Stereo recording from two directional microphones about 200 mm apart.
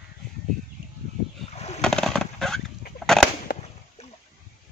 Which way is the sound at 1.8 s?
5° left (ahead or behind).